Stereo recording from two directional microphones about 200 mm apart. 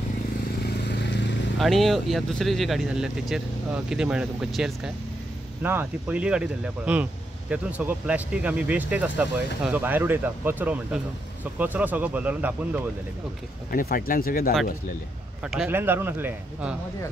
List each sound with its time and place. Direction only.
0.7 s vehicle: 55° left (ahead or behind)
1.6 s speech: centre (ahead or behind)
13.7 s speech: 45° left (ahead or behind)
15.4 s speech: 5° right (ahead or behind)